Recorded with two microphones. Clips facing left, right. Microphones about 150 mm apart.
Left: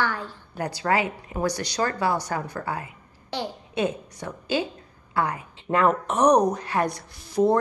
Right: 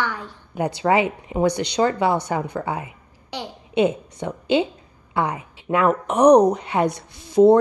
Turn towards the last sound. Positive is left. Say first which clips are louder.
# right 7 dB
turn(degrees=-25)  # may be behind; listen again after turning